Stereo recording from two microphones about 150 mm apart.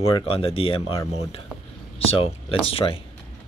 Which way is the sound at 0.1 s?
40° left (ahead or behind).